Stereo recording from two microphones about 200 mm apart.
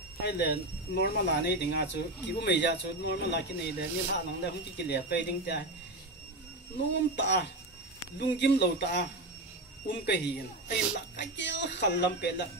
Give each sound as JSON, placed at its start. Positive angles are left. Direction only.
{"t": 0.2, "sound": "speech", "side_deg": 55}
{"t": 7.2, "sound": "speech", "side_deg": 60}